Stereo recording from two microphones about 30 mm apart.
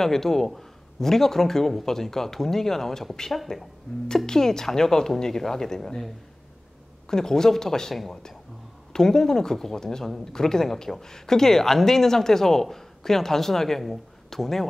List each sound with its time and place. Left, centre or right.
0.0 s a man's voice: centre
3.9 s a man's voice: left
7.1 s speech: centre
8.9 s a man's voice: centre